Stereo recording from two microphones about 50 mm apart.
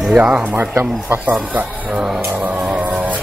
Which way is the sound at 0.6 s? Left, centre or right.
Right.